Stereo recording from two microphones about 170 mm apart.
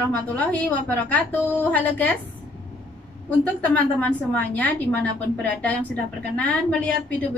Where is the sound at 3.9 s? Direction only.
10° left (ahead or behind).